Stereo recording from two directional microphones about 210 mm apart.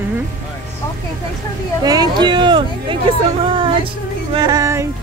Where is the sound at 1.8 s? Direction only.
20° right (ahead or behind).